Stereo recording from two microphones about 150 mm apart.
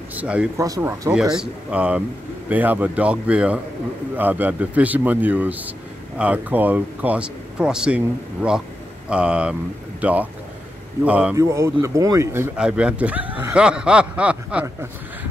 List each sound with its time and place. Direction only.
0.1 s speech: 10° right (ahead or behind)
0.6 s speech: 20° right (ahead or behind)
1.1 s speech: 5° right (ahead or behind)
11.3 s speech: 20° right (ahead or behind)
12.5 s speech: 5° right (ahead or behind)